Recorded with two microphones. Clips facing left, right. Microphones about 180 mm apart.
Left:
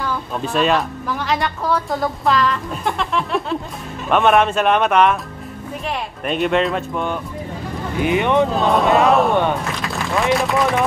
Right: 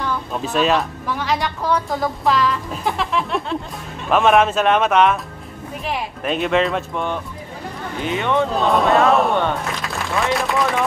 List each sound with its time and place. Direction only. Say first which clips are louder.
0.0 s a woman's voice: even; centre (ahead or behind)
8.0 s speech: left 4 dB; 15° left (ahead or behind)
8.5 s speech: left 1 dB; centre (ahead or behind)